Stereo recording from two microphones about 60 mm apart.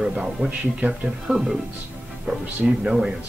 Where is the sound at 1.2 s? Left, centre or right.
Centre.